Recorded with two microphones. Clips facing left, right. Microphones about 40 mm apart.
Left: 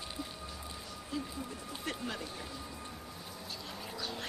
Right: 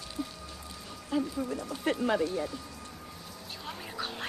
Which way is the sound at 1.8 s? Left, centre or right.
Right.